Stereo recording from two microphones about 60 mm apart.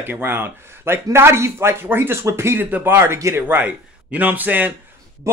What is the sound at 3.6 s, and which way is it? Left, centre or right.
A man's voice, right.